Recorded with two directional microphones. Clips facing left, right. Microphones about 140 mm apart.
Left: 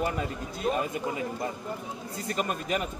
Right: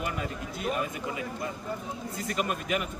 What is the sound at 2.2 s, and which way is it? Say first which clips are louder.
Speech: even; 35° left (ahead or behind).